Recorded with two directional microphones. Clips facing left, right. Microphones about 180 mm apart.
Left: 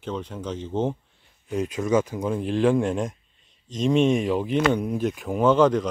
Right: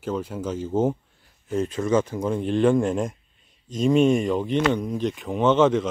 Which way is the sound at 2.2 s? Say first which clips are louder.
Right 1 dB; centre (ahead or behind).